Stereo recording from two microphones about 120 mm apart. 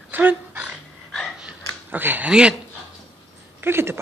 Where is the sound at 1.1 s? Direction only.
Centre (ahead or behind).